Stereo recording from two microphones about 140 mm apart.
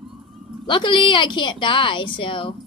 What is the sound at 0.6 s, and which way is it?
A woman's voice, 35° left (ahead or behind).